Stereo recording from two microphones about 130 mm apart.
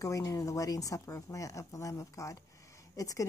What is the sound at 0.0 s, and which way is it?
A woman's voice, 25° left (ahead or behind).